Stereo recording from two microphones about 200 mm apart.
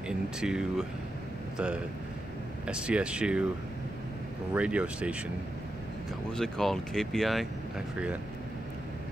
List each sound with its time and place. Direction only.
0.4 s speech: 5° right (ahead or behind)
2.6 s speech: 5° right (ahead or behind)
4.6 s speech: 5° right (ahead or behind)
6.3 s speech: centre (ahead or behind)